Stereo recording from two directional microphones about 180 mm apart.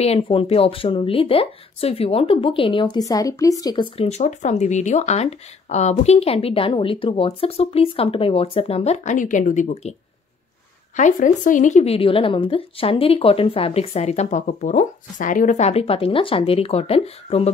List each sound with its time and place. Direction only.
0.0 s speech: 35° left (ahead or behind)
11.0 s speech: 45° left (ahead or behind)